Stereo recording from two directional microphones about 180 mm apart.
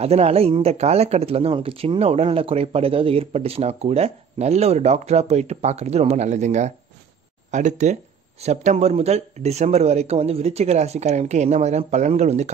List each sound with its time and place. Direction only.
0.0 s speech: 35° right (ahead or behind)